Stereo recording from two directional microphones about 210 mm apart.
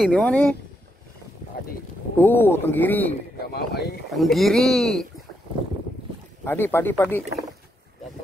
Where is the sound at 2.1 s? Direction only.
10° left (ahead or behind).